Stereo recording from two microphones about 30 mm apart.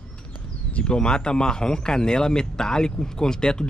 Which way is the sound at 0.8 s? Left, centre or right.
Left.